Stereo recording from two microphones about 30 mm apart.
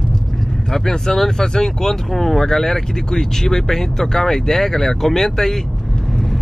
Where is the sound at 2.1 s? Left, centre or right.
Centre.